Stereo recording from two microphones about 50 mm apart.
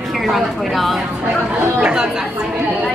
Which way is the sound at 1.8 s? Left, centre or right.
Centre.